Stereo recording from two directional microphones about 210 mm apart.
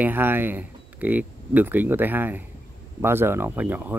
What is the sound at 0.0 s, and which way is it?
Speech, 10° right (ahead or behind).